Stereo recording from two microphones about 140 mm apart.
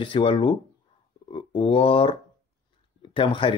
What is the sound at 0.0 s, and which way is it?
Speech, 40° left (ahead or behind).